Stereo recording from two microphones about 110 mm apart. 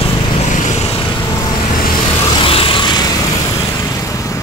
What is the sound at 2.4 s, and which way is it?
Vehicle, 55° left (ahead or behind).